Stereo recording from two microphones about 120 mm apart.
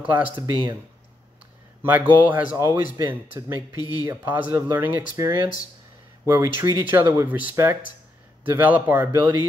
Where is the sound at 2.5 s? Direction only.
25° right (ahead or behind).